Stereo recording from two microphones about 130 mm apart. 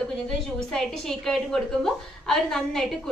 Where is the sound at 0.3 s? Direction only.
5° left (ahead or behind).